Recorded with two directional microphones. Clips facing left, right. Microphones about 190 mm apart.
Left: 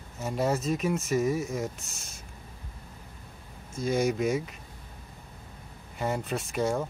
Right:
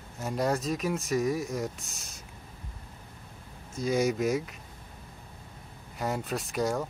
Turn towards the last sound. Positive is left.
turn(degrees=0)  # may be behind; listen again after turning